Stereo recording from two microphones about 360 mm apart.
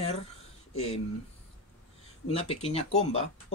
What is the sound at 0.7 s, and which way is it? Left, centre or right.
Speech, centre.